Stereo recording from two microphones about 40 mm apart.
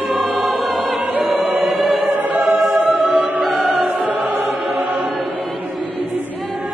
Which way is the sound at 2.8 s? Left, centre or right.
Right.